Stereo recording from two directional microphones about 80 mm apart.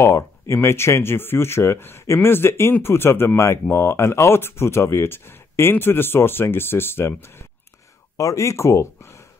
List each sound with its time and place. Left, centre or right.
0.0 s speech: left
8.2 s speech: left